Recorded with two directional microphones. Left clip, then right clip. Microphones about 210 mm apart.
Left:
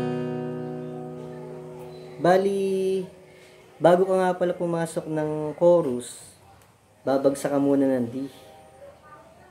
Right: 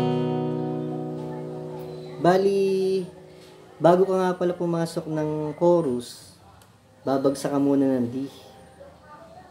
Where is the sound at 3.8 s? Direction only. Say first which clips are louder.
Even; 5° right (ahead or behind).